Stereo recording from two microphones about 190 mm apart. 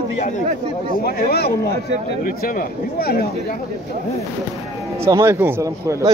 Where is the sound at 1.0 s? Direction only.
55° left (ahead or behind).